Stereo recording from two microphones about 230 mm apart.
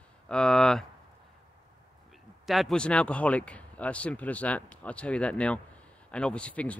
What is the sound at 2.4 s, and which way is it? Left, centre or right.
Speech, centre.